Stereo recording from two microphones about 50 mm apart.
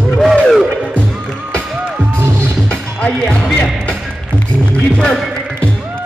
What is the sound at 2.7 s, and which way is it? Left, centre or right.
Music, centre.